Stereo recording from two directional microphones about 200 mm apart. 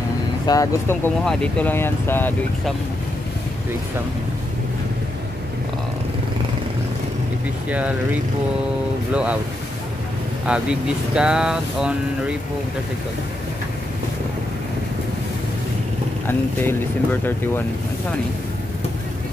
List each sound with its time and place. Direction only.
0.5 s speech: 15° left (ahead or behind)
9.1 s speech: 5° right (ahead or behind)
10.4 s speech: 5° right (ahead or behind)
16.3 s speech: 10° left (ahead or behind)